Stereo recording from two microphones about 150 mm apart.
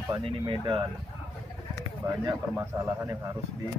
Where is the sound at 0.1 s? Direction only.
35° right (ahead or behind).